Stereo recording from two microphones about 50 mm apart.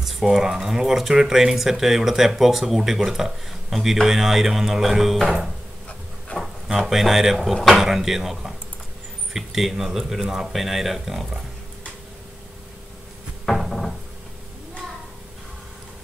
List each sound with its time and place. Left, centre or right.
0.0 s speech: centre
6.3 s a sound: centre
6.9 s speech: centre
7.8 s speech: centre
13.7 s cupboard open or close: centre